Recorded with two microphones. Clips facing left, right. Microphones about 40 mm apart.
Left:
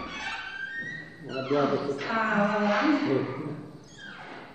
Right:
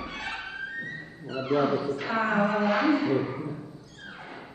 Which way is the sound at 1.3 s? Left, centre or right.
Centre.